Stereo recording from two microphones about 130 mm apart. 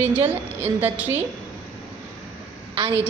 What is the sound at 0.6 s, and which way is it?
Speech, 15° right (ahead or behind).